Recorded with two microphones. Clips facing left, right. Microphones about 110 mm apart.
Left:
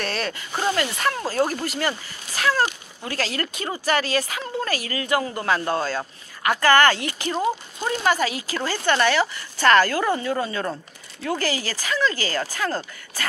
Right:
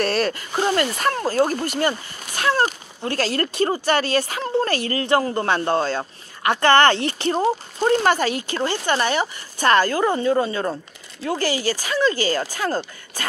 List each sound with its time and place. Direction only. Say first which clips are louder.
0.7 s speech: right 3 dB; 35° right (ahead or behind)